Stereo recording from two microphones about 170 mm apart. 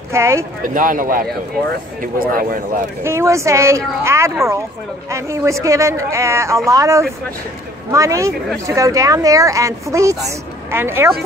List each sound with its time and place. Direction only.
0.1 s speech: 15° right (ahead or behind)
0.6 s a man's voice: 55° right (ahead or behind)
3.0 s a woman's voice: 15° right (ahead or behind)